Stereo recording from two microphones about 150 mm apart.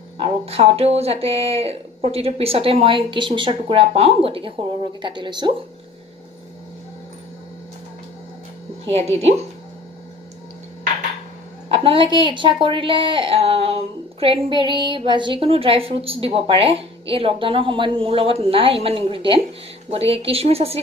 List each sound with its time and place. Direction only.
0.2 s a woman's voice: 40° right (ahead or behind)
8.8 s speech: 45° right (ahead or behind)
11.7 s a woman's voice: 35° right (ahead or behind)